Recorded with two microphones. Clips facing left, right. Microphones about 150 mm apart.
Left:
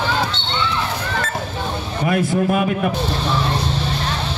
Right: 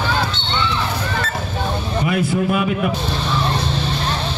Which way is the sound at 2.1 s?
45° left (ahead or behind).